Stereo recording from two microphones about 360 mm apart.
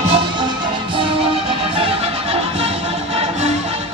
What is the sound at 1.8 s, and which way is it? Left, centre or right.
Music, centre.